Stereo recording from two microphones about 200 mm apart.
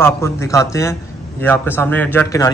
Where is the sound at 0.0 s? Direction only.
15° left (ahead or behind).